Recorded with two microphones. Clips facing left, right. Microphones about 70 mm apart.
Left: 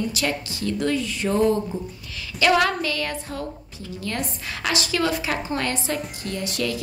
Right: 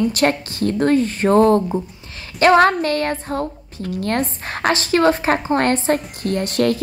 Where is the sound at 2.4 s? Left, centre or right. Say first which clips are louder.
Right 7 dB; right.